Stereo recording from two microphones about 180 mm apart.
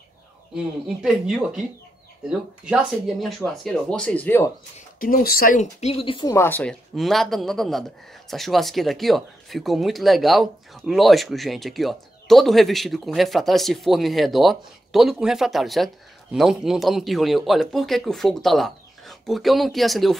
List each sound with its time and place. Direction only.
1.0 s speech: 5° right (ahead or behind)
4.7 s speech: 50° left (ahead or behind); by 6.3 s 30° left (ahead or behind)
6.3 s speech: 10° left (ahead or behind)